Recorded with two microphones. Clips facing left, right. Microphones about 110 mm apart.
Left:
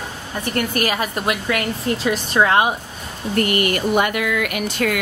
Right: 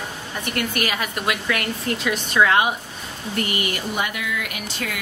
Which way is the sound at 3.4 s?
55° left (ahead or behind).